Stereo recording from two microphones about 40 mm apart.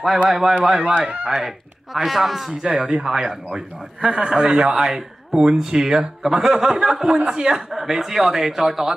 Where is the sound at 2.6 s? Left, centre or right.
Centre.